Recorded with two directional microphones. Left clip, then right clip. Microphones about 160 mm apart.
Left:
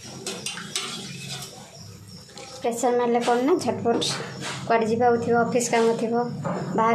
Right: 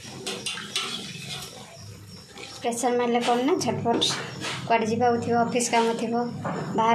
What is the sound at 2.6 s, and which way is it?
Speech, 15° left (ahead or behind).